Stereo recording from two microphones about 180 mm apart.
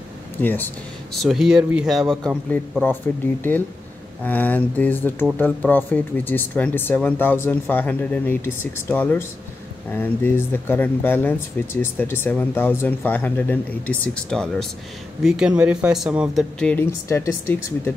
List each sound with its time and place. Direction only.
0.4 s speech: 10° left (ahead or behind)
1.1 s speech: centre (ahead or behind)
3.1 s speech: 10° left (ahead or behind)
16.5 s speech: 10° left (ahead or behind)